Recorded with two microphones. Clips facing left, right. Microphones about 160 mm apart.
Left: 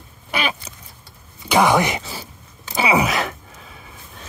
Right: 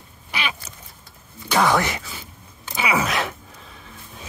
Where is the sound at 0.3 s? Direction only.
45° left (ahead or behind).